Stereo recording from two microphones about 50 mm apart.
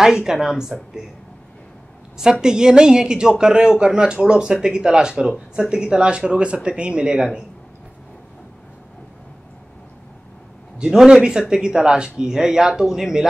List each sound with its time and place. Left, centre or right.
0.0 s speech: centre
2.4 s speech: centre
10.8 s speech: centre